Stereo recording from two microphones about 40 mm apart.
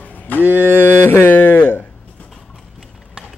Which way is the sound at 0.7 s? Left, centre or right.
Left.